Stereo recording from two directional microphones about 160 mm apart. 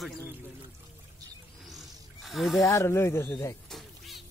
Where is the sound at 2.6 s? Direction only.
20° left (ahead or behind).